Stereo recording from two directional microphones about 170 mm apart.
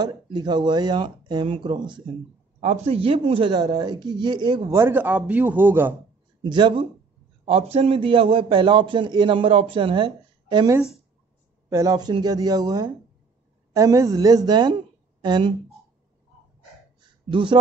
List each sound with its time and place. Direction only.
0.0 s a woman's voice: 25° right (ahead or behind)
2.6 s a woman's voice: 40° right (ahead or behind)
4.7 s a man's voice: 10° right (ahead or behind)
6.4 s a woman's voice: 25° right (ahead or behind)
17.0 s a sound: 30° right (ahead or behind)